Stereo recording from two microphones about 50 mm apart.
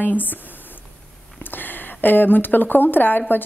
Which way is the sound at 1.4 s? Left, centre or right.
Left.